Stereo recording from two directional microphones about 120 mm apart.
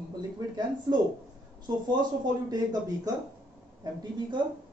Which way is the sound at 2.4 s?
30° right (ahead or behind).